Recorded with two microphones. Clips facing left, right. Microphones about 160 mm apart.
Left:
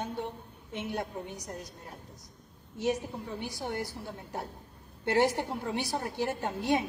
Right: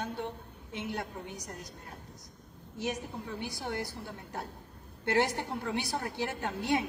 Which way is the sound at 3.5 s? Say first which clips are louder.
Left 1 dB; 15° left (ahead or behind).